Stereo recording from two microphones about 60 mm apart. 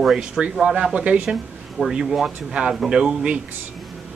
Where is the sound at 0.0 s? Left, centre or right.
Centre.